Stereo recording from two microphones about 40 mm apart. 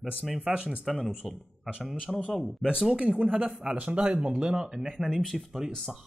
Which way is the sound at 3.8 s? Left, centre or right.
Right.